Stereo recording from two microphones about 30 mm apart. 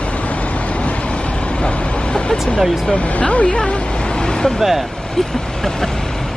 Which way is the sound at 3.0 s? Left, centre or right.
Left.